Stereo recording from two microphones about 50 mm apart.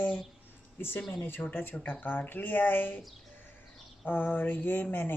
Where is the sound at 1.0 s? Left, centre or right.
Left.